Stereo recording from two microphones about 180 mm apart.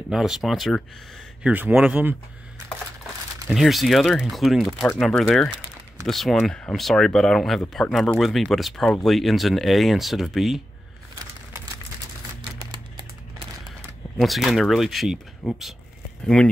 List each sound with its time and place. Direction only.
0.1 s a man's voice: centre (ahead or behind)
3.4 s speech: centre (ahead or behind)
12.7 s crumpling: 25° right (ahead or behind)
14.2 s speech: centre (ahead or behind)